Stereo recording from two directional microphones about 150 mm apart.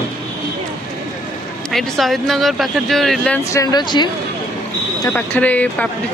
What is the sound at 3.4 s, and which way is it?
Speech, 20° left (ahead or behind).